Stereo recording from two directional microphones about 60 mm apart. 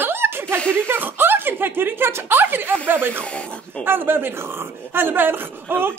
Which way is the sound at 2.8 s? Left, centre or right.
Right.